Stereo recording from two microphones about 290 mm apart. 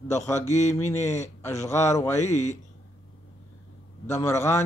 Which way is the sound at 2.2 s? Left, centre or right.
Left.